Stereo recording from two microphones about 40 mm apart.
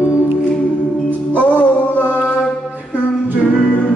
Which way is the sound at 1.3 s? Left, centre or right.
Left.